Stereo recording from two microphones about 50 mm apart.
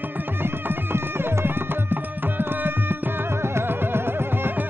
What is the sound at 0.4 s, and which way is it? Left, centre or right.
Music, right.